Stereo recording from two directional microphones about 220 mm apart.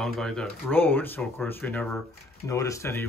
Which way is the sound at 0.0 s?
5° left (ahead or behind).